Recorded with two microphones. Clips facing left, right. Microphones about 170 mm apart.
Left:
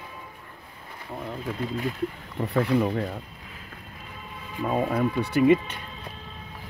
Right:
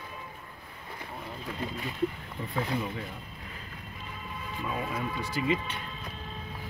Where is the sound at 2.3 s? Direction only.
65° left (ahead or behind).